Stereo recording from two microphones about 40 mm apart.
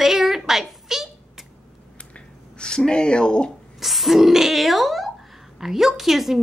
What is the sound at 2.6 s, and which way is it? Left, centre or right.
Speech, centre.